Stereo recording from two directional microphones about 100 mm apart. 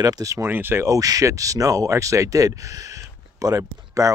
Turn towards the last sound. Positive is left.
turn(degrees=-35)  # may be behind; listen again after turning